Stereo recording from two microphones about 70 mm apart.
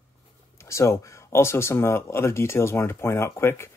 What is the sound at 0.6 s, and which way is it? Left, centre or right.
Speech, left.